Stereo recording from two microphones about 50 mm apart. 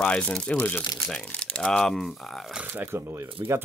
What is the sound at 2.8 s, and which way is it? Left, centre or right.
Speech, right.